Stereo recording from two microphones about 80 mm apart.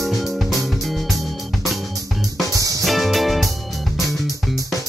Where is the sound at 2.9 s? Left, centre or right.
Centre.